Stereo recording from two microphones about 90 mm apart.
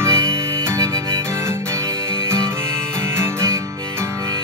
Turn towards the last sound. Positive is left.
turn(degrees=-30)  # may be behind; listen again after turning